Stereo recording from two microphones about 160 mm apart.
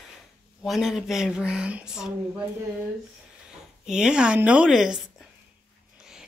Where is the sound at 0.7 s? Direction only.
Centre (ahead or behind).